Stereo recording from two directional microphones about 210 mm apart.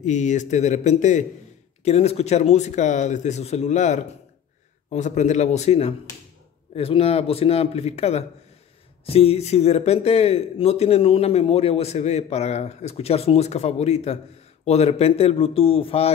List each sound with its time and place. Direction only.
0.0 s speech: 35° left (ahead or behind)